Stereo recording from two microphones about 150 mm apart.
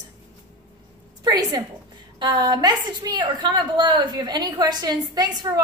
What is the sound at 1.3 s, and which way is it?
A woman's voice, 25° right (ahead or behind).